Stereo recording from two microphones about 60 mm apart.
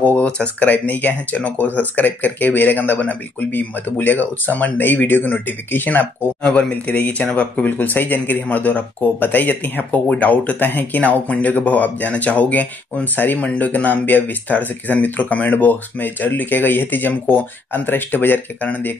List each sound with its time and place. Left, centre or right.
0.0 s a sound: left
0.4 s speech: left
6.4 s speech: centre